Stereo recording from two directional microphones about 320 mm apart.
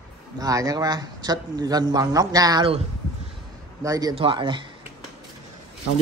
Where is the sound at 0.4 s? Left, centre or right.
Centre.